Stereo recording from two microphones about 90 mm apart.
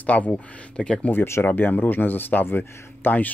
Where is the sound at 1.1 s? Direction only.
25° left (ahead or behind).